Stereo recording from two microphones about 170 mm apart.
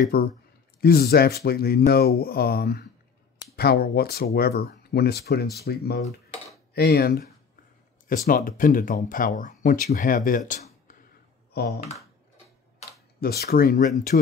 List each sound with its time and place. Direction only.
0.1 s speech: 65° left (ahead or behind)
8.1 s speech: 55° left (ahead or behind)
11.5 s speech: 70° left (ahead or behind)
13.2 s speech: 65° left (ahead or behind)